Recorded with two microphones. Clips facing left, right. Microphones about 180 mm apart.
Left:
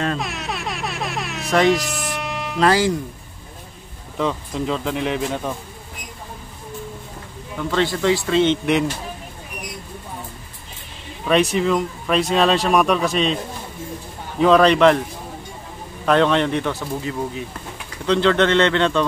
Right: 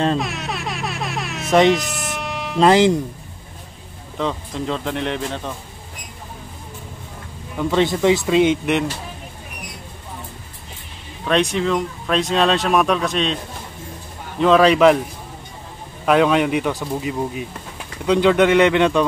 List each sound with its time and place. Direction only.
0.2 s music: centre (ahead or behind)
1.5 s speech: 20° right (ahead or behind)
1.8 s music: centre (ahead or behind)
2.6 s speech: 20° right (ahead or behind)
4.2 s speech: centre (ahead or behind)
7.5 s speech: 20° right (ahead or behind)
11.2 s speech: 5° left (ahead or behind)
14.4 s speech: centre (ahead or behind)
16.1 s speech: 5° right (ahead or behind)